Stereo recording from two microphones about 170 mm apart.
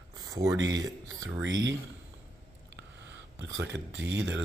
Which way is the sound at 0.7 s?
20° right (ahead or behind).